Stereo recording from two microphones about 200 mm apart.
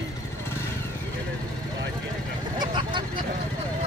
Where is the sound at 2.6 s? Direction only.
25° right (ahead or behind).